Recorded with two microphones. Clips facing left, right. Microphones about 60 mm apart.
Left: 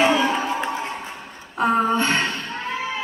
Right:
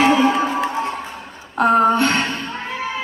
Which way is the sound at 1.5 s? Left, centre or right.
Right.